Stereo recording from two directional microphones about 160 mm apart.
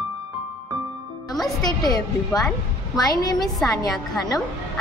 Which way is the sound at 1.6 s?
25° left (ahead or behind).